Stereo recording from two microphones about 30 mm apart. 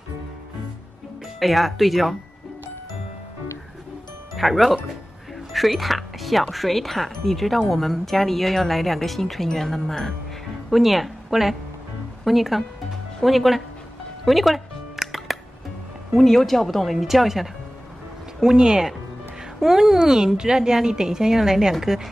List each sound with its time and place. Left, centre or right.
1.4 s speech: centre
4.4 s speech: centre
5.5 s music: centre
6.5 s speech: centre
10.7 s a woman's voice: centre
14.2 s music: centre
16.2 s speech: centre
18.4 s a woman's voice: right